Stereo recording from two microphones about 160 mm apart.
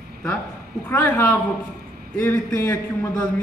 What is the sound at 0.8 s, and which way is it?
A man's voice, 10° left (ahead or behind).